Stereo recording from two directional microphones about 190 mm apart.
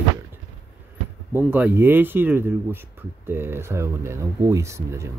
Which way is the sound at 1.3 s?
10° right (ahead or behind).